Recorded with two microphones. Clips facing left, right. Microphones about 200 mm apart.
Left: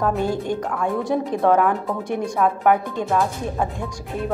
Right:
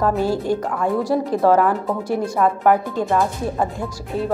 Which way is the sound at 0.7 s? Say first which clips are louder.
Right 1 dB; centre (ahead or behind).